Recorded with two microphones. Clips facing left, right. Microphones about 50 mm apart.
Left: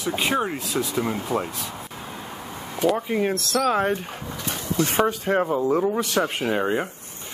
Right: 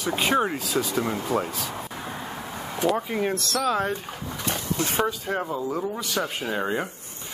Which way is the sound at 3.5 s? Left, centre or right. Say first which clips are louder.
Left 4 dB; left.